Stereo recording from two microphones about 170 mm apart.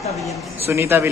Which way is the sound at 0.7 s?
15° right (ahead or behind).